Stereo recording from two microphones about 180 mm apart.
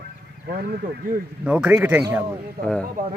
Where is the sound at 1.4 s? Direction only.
5° right (ahead or behind).